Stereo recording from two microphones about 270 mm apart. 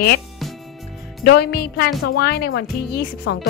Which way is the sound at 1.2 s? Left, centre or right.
Left.